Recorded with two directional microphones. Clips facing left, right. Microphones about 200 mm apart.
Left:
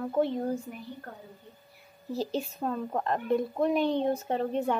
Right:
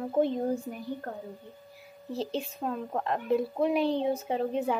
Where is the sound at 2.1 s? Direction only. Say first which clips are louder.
Left 1 dB; centre (ahead or behind).